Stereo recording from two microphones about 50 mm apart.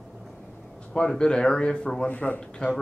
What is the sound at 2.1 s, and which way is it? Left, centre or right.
Speech, left.